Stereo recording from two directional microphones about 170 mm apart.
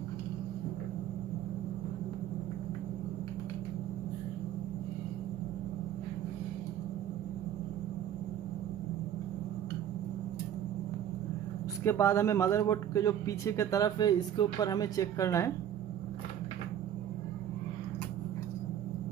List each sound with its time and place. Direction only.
11.8 s speech: 15° left (ahead or behind)